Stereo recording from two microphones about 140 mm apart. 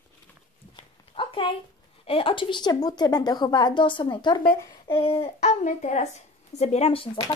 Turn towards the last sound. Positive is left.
turn(degrees=45)  # may be behind; listen again after turning